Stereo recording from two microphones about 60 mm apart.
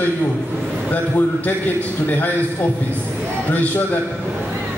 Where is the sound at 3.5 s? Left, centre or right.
Left.